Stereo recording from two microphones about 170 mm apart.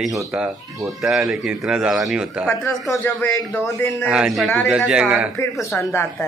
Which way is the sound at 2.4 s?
15° left (ahead or behind).